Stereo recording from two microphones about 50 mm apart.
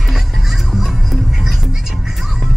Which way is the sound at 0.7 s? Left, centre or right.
Centre.